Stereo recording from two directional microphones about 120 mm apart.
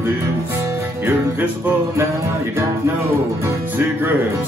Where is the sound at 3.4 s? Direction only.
20° right (ahead or behind).